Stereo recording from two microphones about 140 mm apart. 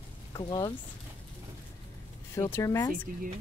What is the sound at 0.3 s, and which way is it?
Speech, 30° left (ahead or behind).